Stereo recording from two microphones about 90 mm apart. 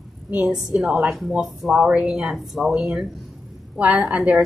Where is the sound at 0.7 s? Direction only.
10° right (ahead or behind).